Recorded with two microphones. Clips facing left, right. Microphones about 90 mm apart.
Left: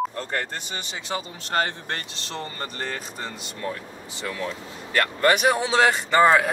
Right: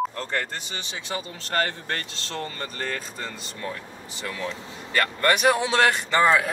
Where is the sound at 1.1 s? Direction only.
20° left (ahead or behind).